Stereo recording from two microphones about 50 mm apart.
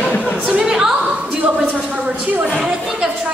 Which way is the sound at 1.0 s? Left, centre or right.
Right.